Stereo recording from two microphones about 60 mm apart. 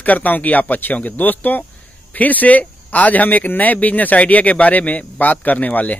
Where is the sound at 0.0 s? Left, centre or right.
Left.